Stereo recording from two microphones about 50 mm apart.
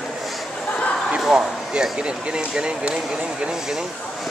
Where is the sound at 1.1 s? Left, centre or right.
Centre.